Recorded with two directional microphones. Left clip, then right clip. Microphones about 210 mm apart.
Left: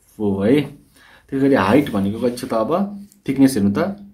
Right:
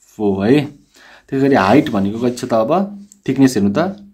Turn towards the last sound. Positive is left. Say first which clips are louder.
# right 3 dB
turn(degrees=-40)  # may be behind; listen again after turning